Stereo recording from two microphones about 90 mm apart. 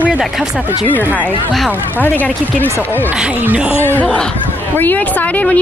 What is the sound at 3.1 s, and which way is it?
Speech, 10° right (ahead or behind).